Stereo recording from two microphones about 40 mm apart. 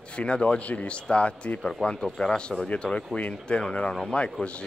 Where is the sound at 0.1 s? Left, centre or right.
Left.